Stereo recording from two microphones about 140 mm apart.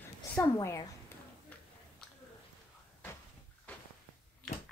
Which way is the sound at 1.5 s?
10° left (ahead or behind).